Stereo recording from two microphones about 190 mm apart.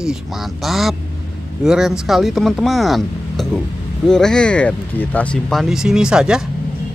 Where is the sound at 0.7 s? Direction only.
Centre (ahead or behind).